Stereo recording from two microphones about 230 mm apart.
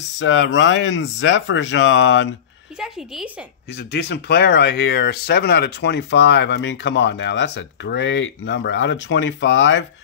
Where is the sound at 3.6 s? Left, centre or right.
Left.